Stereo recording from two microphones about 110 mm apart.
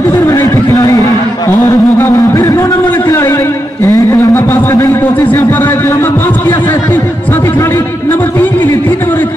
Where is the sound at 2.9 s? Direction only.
20° left (ahead or behind).